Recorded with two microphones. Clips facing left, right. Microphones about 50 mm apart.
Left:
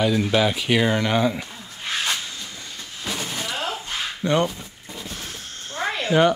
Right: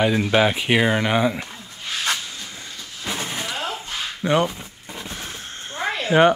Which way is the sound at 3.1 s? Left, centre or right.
Centre.